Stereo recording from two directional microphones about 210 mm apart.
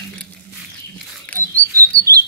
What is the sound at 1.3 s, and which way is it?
Dog, 10° left (ahead or behind).